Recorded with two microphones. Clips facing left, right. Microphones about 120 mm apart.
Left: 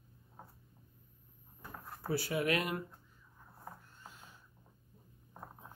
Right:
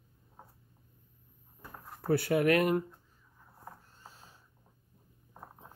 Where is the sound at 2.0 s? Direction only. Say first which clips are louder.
Right 7 dB; 55° right (ahead or behind).